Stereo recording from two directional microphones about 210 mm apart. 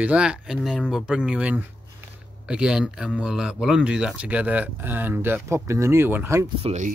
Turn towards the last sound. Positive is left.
turn(degrees=-35)  # may be behind; listen again after turning